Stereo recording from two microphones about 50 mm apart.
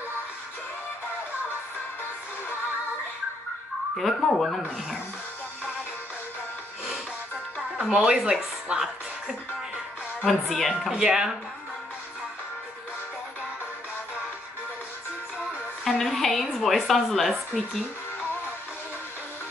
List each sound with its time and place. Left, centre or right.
3.9 s a woman's voice: centre
4.7 s speech: centre
7.9 s speech: centre
10.2 s a woman's voice: centre
10.9 s speech: centre
15.8 s a woman's voice: centre